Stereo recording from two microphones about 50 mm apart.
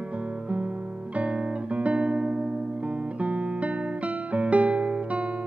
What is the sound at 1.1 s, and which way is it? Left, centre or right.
Guitar, right.